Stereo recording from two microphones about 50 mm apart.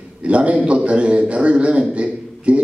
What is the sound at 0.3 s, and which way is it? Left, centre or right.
A man's voice, right.